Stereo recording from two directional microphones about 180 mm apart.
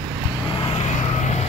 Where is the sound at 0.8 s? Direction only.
40° left (ahead or behind).